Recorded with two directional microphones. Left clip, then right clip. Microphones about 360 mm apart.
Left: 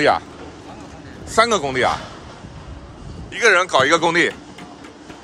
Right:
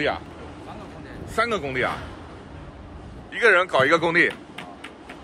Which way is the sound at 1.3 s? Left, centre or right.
Centre.